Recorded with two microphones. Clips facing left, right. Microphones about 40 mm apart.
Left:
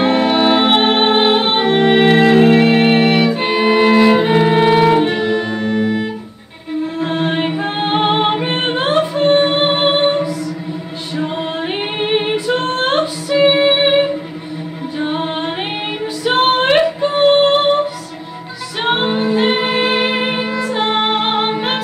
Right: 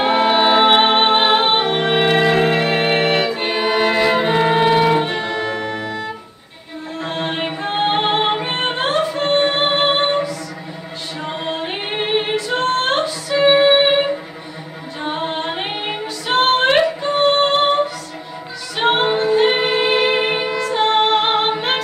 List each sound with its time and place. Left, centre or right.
0.0 s music: centre
5.6 s music: left
7.0 s music: centre
12.6 s female singing: centre
13.5 s music: centre
15.0 s a capella: centre
16.3 s female singing: centre
18.8 s music: centre
21.5 s a capella: centre